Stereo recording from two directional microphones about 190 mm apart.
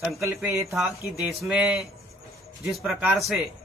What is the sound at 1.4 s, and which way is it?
Speech, centre (ahead or behind).